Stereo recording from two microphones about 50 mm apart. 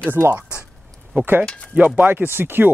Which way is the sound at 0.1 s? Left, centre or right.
Right.